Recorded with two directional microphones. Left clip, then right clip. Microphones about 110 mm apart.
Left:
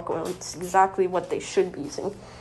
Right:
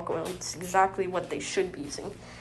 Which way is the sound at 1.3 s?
60° left (ahead or behind).